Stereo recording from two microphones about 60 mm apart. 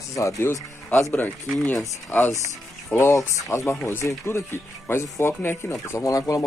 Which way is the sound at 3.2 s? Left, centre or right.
Left.